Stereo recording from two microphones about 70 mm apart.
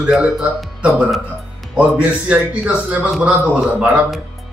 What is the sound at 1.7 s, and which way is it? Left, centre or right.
A man's voice, centre.